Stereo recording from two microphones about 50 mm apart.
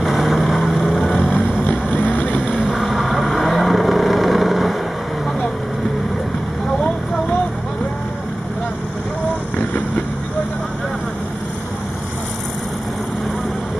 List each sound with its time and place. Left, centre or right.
0.0 s vehicle: centre
2.1 s vehicle: left
2.5 s vehicle: centre
2.8 s vehicle: centre